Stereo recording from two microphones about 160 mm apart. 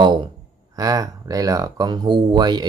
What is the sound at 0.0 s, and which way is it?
Speech, 30° right (ahead or behind).